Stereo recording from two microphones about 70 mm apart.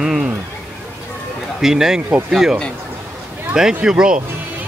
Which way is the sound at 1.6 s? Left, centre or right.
Centre.